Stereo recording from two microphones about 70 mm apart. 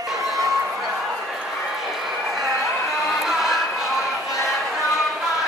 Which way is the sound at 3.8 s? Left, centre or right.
Centre.